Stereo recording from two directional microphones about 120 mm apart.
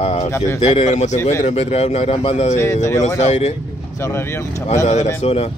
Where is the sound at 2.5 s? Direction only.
25° left (ahead or behind).